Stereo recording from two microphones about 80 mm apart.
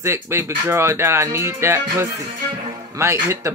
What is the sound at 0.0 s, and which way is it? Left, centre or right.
Speech, right.